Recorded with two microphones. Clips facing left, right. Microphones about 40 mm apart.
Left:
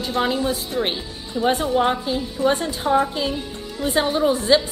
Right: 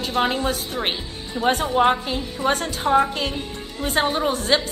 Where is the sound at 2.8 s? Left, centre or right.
Centre.